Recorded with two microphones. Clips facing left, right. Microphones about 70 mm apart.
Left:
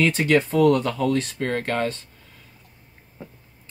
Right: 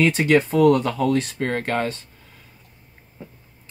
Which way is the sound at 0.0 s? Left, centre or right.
Centre.